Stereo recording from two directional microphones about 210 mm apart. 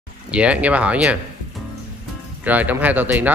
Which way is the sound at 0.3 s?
5° right (ahead or behind).